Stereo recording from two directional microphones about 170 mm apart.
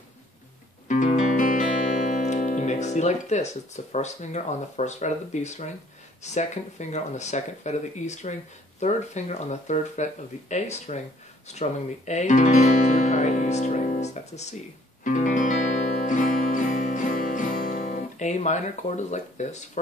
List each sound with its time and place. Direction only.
0.8 s music: 45° left (ahead or behind)
6.2 s speech: 45° left (ahead or behind)
15.0 s music: 45° left (ahead or behind)